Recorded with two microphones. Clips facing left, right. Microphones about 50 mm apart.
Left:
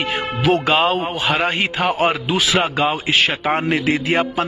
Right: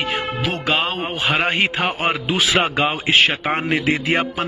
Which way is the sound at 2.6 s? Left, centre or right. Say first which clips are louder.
Left 1 dB; centre.